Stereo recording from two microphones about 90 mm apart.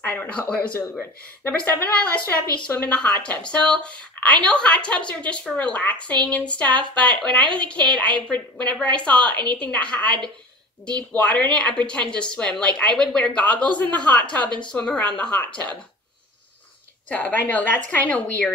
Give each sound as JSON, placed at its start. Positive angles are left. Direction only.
{"t": 0.0, "sound": "speech", "side_deg": 25}
{"t": 17.1, "sound": "speech", "side_deg": 20}